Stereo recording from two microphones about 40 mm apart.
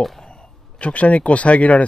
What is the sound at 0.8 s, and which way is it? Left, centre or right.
Speech, left.